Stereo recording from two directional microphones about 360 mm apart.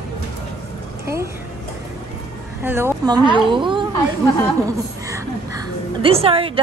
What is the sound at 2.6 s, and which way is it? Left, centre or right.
A woman's voice, centre.